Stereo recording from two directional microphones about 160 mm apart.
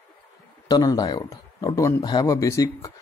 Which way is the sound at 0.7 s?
25° left (ahead or behind).